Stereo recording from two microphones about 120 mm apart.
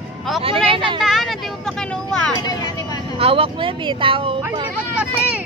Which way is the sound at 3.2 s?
50° right (ahead or behind).